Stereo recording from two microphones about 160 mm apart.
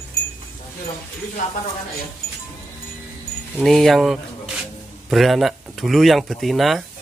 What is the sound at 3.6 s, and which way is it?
Speech, centre (ahead or behind).